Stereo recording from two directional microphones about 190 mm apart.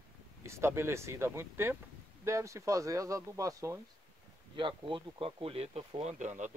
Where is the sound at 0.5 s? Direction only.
15° right (ahead or behind).